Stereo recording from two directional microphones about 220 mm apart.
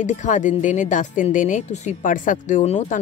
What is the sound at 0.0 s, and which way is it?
Speech, 35° left (ahead or behind).